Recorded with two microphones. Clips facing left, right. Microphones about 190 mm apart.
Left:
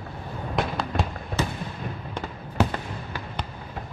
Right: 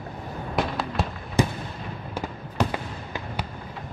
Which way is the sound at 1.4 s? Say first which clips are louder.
Right 5 dB; 15° right (ahead or behind).